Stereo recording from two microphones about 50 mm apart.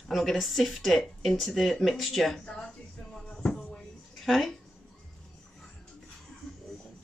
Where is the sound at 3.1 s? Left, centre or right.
Centre.